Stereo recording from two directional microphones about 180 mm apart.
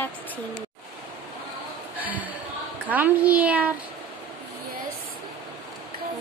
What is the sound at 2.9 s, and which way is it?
Speech, 10° right (ahead or behind).